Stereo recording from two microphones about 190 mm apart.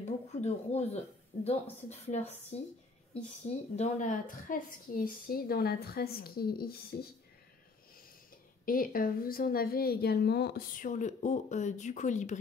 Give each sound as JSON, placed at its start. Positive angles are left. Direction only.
{"t": 0.0, "sound": "a woman's voice", "side_deg": 35}
{"t": 8.6, "sound": "a woman's voice", "side_deg": 50}